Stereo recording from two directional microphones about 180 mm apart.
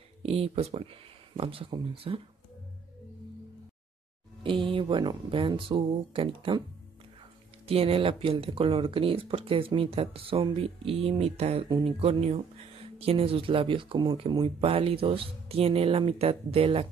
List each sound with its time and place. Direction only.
0.2 s speech: 35° right (ahead or behind)
4.4 s speech: 30° right (ahead or behind)
7.6 s speech: 35° right (ahead or behind)